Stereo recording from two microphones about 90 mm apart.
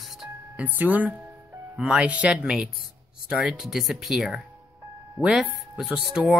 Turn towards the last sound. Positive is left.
turn(degrees=-5)  # may be behind; listen again after turning